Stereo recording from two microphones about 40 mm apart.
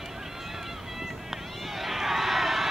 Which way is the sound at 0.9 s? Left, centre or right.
Centre.